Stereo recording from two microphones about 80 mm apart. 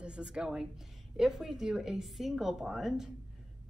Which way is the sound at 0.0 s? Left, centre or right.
Centre.